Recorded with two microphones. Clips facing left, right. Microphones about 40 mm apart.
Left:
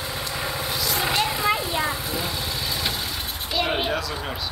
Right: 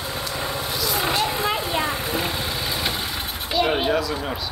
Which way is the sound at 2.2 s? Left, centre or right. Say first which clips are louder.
Right 2 dB; right.